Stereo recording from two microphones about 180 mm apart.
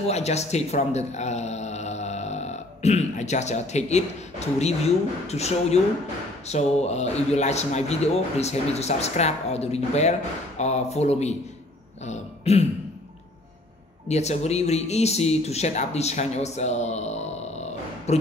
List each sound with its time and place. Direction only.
0.0 s speech: 35° left (ahead or behind)
14.0 s speech: 40° left (ahead or behind)